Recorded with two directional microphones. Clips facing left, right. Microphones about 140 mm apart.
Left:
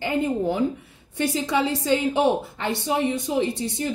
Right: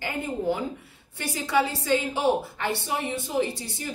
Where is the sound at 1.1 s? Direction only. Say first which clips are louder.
Left 2 dB; 20° left (ahead or behind).